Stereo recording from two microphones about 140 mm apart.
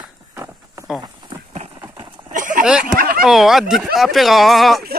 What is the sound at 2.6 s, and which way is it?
Speech, 5° right (ahead or behind).